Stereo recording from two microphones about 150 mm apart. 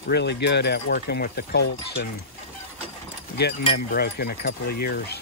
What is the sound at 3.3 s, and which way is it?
Speech, 90° left.